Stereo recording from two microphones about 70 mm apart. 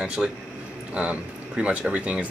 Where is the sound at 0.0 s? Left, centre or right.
Centre.